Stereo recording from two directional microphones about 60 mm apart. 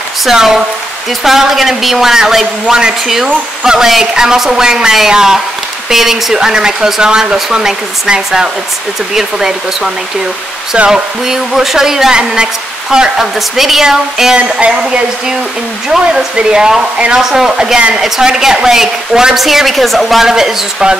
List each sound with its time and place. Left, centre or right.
0.2 s a woman's voice: centre